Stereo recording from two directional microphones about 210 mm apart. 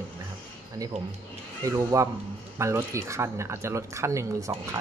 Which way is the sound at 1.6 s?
15° right (ahead or behind).